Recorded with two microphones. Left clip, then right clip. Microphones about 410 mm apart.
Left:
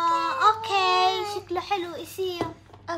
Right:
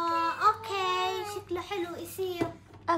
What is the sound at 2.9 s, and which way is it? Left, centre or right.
Music, centre.